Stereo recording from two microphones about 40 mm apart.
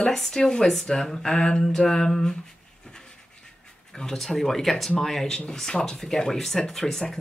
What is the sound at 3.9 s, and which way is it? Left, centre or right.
Speech, centre.